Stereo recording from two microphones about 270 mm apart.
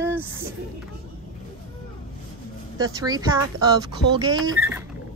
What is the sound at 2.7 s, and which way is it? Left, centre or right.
A woman's voice, centre.